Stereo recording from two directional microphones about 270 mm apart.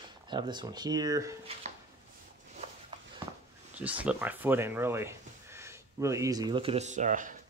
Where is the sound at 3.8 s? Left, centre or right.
Centre.